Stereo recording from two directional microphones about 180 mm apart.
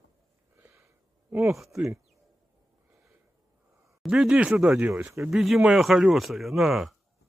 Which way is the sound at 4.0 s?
5° right (ahead or behind).